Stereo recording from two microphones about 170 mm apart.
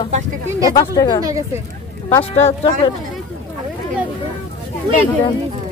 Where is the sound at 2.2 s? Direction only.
35° left (ahead or behind).